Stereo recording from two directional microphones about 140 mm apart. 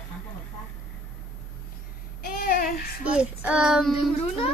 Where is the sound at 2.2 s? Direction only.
90° left.